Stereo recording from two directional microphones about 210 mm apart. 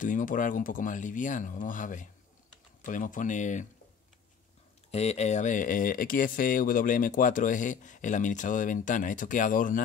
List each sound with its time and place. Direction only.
0.0 s speech: 40° left (ahead or behind)
4.9 s speech: 30° left (ahead or behind)